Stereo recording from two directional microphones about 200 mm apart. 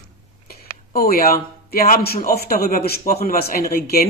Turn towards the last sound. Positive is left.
turn(degrees=50)  # may be behind; listen again after turning